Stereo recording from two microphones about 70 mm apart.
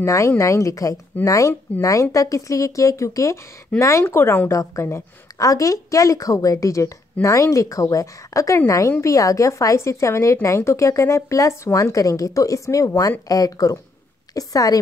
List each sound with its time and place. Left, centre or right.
0.0 s a woman's voice: left
4.0 s speech: left
4.5 s a woman's voice: left